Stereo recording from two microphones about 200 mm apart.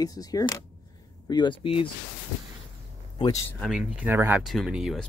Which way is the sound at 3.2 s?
15° left (ahead or behind).